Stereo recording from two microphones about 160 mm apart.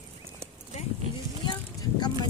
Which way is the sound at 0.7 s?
45° left (ahead or behind).